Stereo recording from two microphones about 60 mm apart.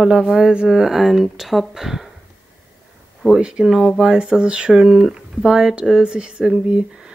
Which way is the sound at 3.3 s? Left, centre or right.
Centre.